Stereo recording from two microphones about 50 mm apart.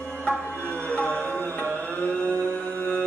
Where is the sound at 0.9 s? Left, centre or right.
Left.